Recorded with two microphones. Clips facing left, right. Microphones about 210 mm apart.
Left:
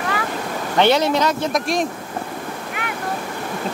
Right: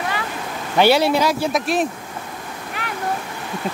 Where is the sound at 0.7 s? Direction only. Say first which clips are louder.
Right 1 dB; 10° right (ahead or behind).